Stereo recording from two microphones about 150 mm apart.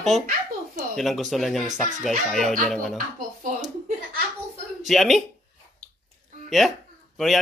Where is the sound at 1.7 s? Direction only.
55° right (ahead or behind).